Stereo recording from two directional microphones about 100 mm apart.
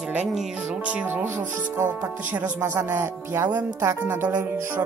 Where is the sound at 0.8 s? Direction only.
15° right (ahead or behind).